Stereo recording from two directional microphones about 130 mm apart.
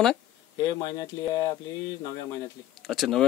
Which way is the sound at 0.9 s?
30° left (ahead or behind).